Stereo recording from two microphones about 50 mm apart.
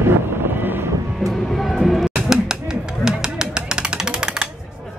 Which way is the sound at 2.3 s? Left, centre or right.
Centre.